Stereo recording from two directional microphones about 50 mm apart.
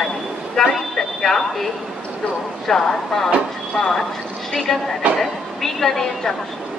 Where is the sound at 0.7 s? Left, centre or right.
Centre.